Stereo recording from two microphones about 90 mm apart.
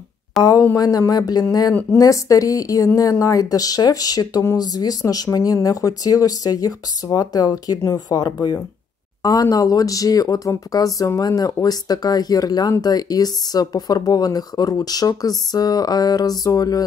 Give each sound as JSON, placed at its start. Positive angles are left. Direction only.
{"t": 0.4, "sound": "speech", "side_deg": 40}